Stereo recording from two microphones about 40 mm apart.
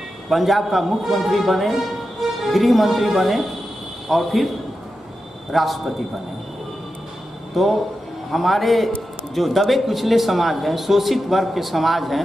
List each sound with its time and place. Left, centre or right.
0.3 s speech: centre
5.5 s speech: centre
7.5 s speech: centre